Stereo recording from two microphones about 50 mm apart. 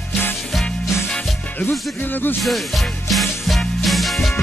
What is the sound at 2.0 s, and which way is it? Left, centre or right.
Speech, left.